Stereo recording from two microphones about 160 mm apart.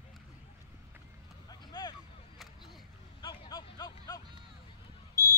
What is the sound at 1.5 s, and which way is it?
Vehicle, 25° left (ahead or behind).